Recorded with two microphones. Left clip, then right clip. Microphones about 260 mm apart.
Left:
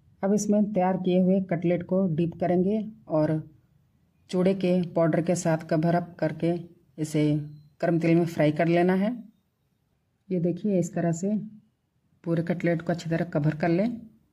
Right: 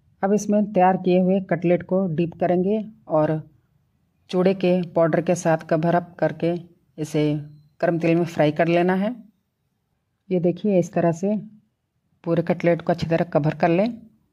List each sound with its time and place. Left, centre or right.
0.2 s speech: right
10.2 s speech: right